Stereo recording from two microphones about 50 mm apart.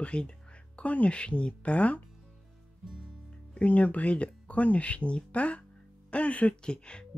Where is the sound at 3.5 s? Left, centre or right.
Left.